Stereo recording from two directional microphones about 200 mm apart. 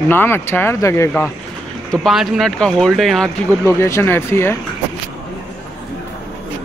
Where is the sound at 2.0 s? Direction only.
Centre (ahead or behind).